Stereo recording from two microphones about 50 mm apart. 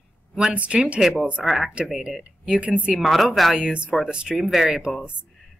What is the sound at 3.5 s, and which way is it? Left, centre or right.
Speech, centre.